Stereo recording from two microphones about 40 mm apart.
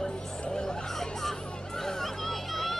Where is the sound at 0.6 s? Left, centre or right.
Centre.